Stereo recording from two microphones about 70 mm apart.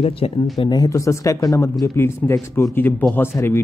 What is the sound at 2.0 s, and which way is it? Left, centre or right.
Speech, left.